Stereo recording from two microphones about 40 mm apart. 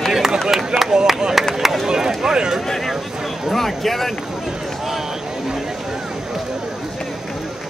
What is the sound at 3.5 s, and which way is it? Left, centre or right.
Speech, centre.